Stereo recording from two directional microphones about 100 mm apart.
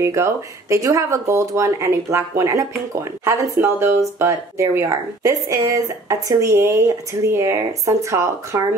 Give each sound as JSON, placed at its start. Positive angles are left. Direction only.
{"t": 0.0, "sound": "speech", "side_deg": -30}